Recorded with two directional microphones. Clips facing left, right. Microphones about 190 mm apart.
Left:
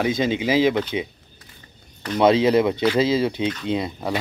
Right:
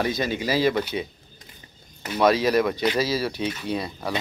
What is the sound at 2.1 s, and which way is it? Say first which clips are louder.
Speech: left 3 dB; 25° left (ahead or behind).